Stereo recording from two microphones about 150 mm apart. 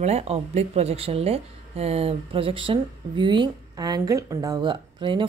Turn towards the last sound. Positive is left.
turn(degrees=-35)  # may be behind; listen again after turning